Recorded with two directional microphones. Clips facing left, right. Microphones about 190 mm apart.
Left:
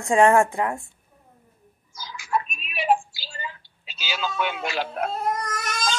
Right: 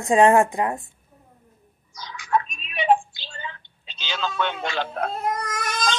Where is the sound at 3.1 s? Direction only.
5° left (ahead or behind).